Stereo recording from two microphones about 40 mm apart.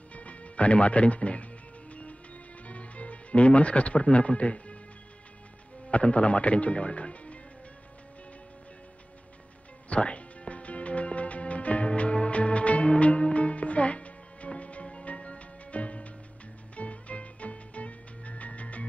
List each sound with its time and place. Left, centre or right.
0.1 s music: left
5.9 s speech: left
9.8 s music: left